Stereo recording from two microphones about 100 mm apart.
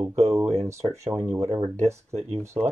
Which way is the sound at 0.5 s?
30° right (ahead or behind).